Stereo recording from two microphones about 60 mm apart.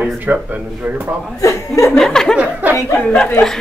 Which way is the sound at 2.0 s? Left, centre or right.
Centre.